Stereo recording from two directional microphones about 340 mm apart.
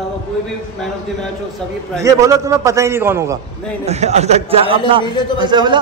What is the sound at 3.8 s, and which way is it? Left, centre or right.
A man's voice, centre.